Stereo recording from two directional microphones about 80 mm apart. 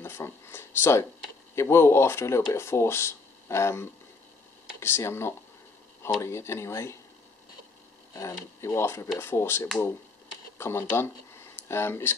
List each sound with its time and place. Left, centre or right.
0.0 s a sound: left
1.5 s speech: left
8.1 s speech: left